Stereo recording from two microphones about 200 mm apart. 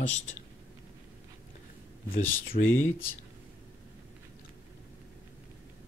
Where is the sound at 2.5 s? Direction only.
35° left (ahead or behind).